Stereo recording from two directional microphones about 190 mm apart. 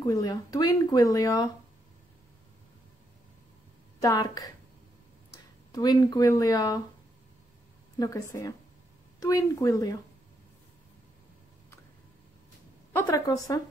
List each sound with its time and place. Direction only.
0.0 s speech: 20° left (ahead or behind)
4.0 s speech: 20° left (ahead or behind)
5.7 s speech: 20° left (ahead or behind)
8.0 s a woman's voice: 15° left (ahead or behind)
12.9 s a woman's voice: 15° left (ahead or behind)